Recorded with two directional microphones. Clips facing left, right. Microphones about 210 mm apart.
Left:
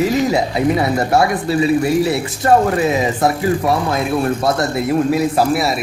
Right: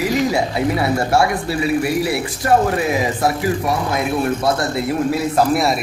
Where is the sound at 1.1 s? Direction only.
20° left (ahead or behind).